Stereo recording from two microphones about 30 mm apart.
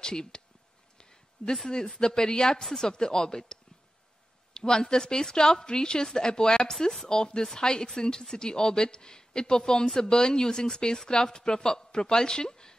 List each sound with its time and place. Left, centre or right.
0.0 s a woman's voice: left
0.9 s a sound: left
2.0 s a woman's voice: left
4.6 s a woman's voice: centre
6.6 s a woman's voice: centre